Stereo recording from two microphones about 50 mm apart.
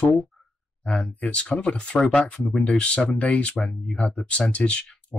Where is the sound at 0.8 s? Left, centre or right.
Centre.